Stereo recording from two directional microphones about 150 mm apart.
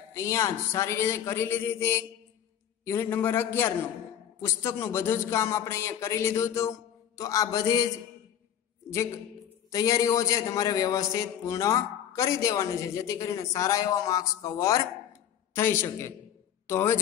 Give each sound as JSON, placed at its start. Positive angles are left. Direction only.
{"t": 0.1, "sound": "a man's voice", "side_deg": 20}
{"t": 8.9, "sound": "a man's voice", "side_deg": 20}